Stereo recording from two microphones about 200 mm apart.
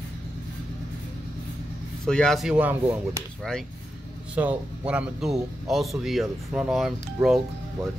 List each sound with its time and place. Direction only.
2.0 s speech: 5° left (ahead or behind)
4.4 s speech: 5° right (ahead or behind)